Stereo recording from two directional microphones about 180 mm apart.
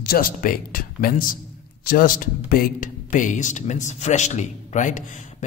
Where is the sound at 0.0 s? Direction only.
55° left (ahead or behind).